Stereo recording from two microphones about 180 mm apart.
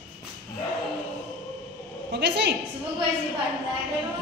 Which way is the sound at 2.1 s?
65° right (ahead or behind).